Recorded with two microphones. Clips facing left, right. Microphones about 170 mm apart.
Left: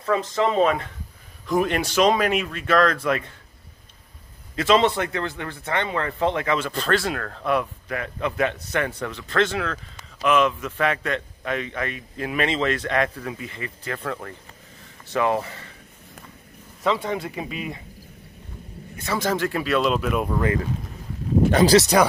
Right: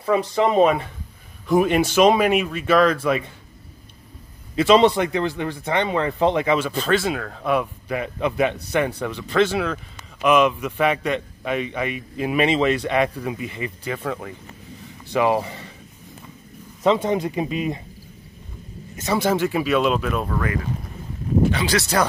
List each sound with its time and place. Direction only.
0.0 s a man's voice: 10° right (ahead or behind)
4.6 s a man's voice: 15° right (ahead or behind)
16.8 s speech: 20° right (ahead or behind)
19.1 s speech: 10° right (ahead or behind)
20.2 s speech: 25° left (ahead or behind)
21.5 s speech: 45° left (ahead or behind)
21.7 s speech: 15° left (ahead or behind)